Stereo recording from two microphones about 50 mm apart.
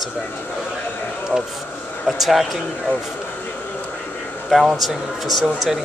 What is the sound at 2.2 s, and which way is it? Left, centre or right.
Speech, centre.